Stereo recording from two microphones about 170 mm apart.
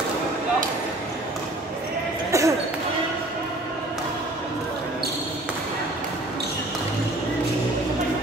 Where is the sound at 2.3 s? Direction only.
15° right (ahead or behind).